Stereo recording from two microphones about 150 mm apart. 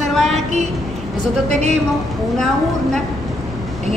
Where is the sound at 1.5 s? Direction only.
45° right (ahead or behind).